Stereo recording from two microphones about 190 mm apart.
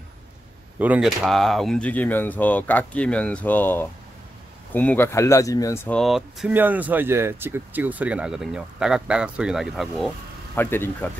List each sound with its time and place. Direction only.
0.7 s speech: 10° right (ahead or behind); by 5.8 s 15° left (ahead or behind)
5.9 s speech: centre (ahead or behind)
10.5 s speech: 10° left (ahead or behind)